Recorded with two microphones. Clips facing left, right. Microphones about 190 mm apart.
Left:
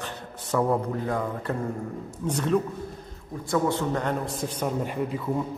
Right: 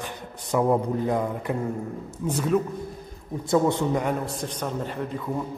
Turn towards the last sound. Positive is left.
turn(degrees=10)  # may be behind; listen again after turning